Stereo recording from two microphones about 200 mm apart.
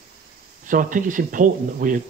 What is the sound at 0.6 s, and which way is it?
Speech, 40° right (ahead or behind).